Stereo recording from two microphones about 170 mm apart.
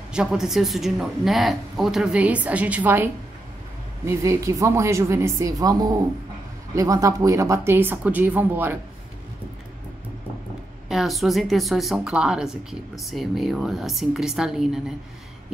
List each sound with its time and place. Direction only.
0.1 s speech: 5° right (ahead or behind)
10.9 s speech: centre (ahead or behind)